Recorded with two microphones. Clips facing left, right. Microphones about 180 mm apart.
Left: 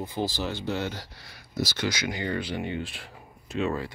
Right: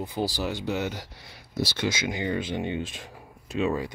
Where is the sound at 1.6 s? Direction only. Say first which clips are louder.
Right 1 dB; 60° right (ahead or behind).